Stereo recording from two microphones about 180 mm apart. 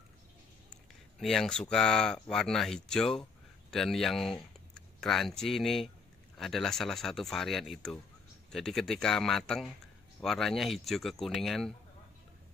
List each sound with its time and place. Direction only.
1.2 s speech: centre (ahead or behind)